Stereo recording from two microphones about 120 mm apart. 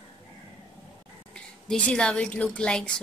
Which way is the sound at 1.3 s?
10° left (ahead or behind).